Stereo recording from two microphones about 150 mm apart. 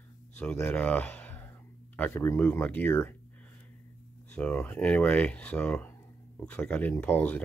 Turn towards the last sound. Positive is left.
turn(degrees=10)  # may be behind; listen again after turning